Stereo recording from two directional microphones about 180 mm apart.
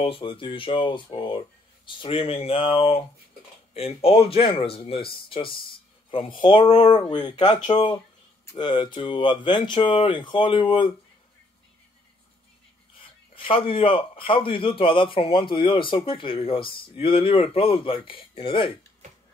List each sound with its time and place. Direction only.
0.0 s speech: 30° left (ahead or behind)
13.0 s speech: 30° left (ahead or behind)